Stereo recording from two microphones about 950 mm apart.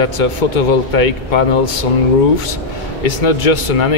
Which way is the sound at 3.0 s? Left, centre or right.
Left.